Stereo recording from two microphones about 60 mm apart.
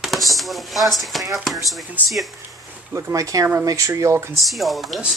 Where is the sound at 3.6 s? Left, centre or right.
Right.